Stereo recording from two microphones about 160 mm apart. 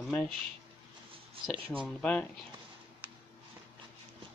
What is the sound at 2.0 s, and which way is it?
Speech, 10° left (ahead or behind).